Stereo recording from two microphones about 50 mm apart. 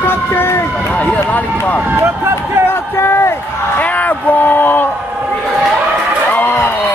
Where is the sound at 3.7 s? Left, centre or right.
Left.